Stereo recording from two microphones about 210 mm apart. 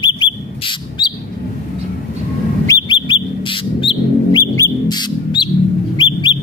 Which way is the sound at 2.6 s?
25° left (ahead or behind).